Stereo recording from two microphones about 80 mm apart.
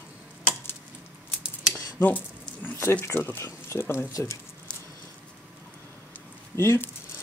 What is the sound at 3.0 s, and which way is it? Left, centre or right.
Speech, left.